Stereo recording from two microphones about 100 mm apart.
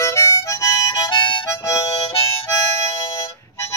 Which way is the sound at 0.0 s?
30° left (ahead or behind).